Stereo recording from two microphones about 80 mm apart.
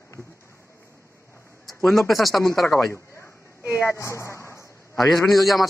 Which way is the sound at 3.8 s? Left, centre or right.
Left.